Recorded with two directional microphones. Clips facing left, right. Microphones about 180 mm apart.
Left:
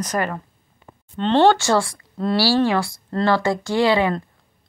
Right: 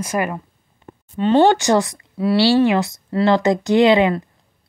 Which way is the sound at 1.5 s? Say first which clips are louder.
Right 2 dB; 20° right (ahead or behind).